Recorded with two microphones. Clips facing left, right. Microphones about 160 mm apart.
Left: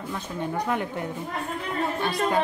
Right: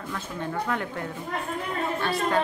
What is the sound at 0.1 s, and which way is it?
A woman's voice, 15° left (ahead or behind).